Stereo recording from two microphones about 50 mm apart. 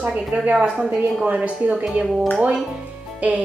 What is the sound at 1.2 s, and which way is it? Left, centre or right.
Speech, right.